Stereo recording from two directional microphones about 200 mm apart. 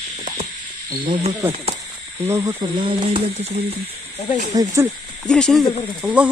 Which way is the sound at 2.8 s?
30° right (ahead or behind).